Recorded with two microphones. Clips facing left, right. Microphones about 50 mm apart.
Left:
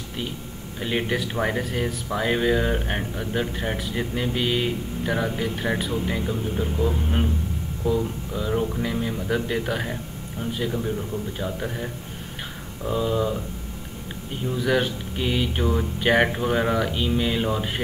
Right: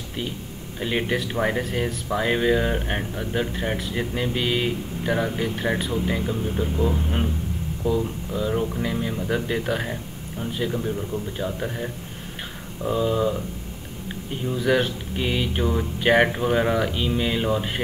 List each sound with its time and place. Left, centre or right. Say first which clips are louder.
0.7 s speech: right 1 dB; centre
14.5 s speech: right 1 dB; centre